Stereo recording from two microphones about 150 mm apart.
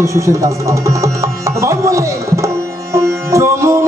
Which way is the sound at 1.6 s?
20° right (ahead or behind).